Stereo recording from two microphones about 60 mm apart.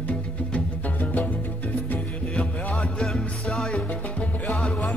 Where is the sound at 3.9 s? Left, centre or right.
Left.